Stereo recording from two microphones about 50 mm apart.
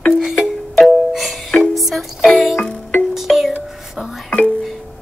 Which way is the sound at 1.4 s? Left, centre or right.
Centre.